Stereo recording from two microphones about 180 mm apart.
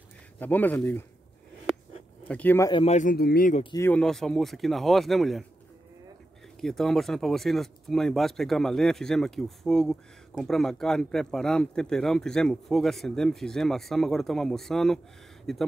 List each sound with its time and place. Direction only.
0.4 s speech: 10° left (ahead or behind)
2.2 s speech: 10° left (ahead or behind)
2.7 s speech: 35° left (ahead or behind)
3.2 s speech: 55° left (ahead or behind)
3.7 s speech: 15° left (ahead or behind)
4.0 s speech: centre (ahead or behind)
6.6 s speech: centre (ahead or behind)